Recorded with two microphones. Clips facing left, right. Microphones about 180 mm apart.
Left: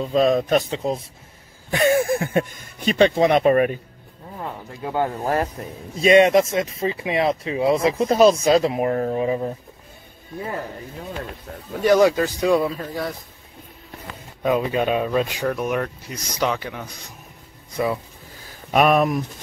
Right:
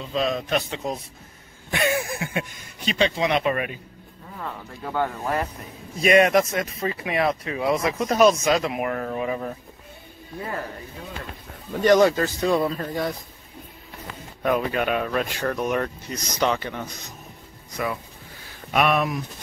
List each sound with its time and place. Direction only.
0.0 s speech: 45° left (ahead or behind)
4.4 s speech: 20° left (ahead or behind)
11.8 s speech: 10° left (ahead or behind)
14.4 s speech: 20° left (ahead or behind)
15.4 s speech: 5° left (ahead or behind)
18.7 s speech: 40° left (ahead or behind)